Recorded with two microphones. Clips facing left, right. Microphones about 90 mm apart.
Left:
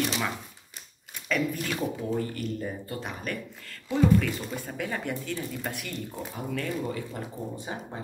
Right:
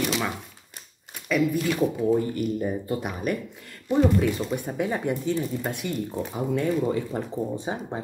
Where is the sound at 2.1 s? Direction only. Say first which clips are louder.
Right 6 dB; 15° right (ahead or behind).